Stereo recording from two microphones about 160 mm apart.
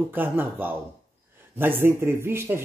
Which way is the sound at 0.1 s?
10° right (ahead or behind).